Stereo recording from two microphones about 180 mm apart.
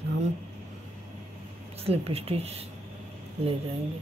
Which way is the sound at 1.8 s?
35° right (ahead or behind).